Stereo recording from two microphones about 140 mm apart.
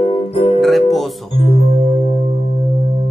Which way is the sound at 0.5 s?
Centre (ahead or behind).